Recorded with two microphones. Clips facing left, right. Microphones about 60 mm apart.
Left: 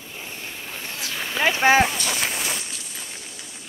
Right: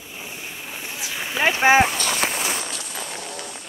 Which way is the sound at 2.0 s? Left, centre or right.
Right.